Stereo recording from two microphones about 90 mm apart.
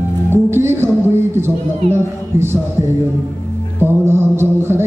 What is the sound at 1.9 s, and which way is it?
Music, 30° right (ahead or behind).